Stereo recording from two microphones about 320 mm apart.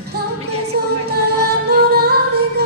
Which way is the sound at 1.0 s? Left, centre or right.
Right.